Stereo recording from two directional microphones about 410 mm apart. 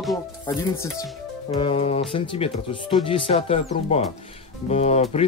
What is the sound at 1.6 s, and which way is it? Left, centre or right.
Speech, centre.